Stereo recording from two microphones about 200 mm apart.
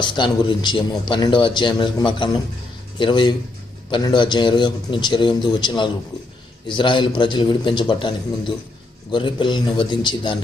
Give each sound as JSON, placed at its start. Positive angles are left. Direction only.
{"t": 0.0, "sound": "speech", "side_deg": 25}